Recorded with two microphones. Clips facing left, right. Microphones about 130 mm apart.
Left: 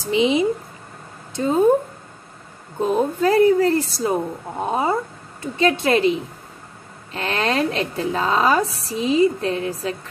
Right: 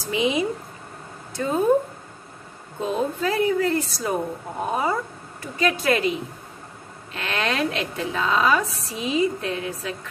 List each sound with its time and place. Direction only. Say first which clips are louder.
0.0 s speech: left 5 dB; 25° left (ahead or behind)
3.2 s a woman's voice: left 9 dB; 40° left (ahead or behind)
7.2 s a woman's voice: left 4 dB; 35° left (ahead or behind)